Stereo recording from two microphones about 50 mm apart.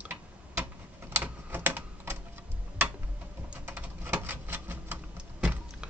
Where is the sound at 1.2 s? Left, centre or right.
Right.